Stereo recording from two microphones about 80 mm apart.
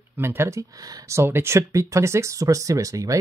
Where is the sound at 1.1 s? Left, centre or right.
Right.